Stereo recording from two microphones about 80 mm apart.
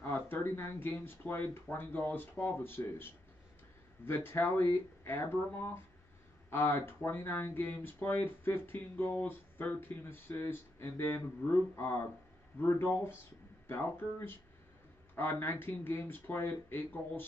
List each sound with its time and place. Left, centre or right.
0.0 s speech: left